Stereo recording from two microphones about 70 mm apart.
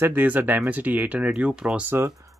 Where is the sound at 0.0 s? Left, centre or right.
Right; by 1.8 s centre.